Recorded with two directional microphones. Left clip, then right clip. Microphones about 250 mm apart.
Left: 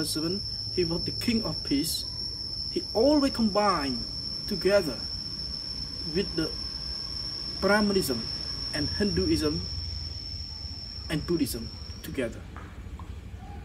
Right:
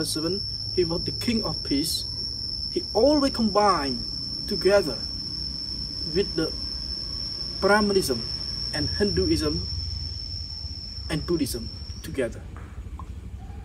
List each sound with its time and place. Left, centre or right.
0.0 s speech: centre
6.1 s speech: centre
7.6 s speech: centre
11.1 s speech: centre